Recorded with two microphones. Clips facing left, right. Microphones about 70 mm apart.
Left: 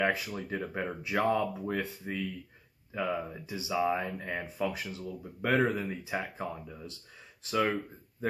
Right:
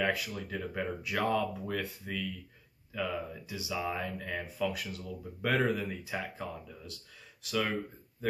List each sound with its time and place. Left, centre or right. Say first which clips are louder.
0.0 s speech: left 2 dB; left